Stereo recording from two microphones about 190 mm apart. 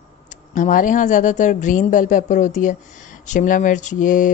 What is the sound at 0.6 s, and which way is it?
Mantra, 45° left (ahead or behind).